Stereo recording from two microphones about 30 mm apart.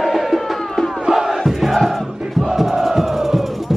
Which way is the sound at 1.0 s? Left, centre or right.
Centre.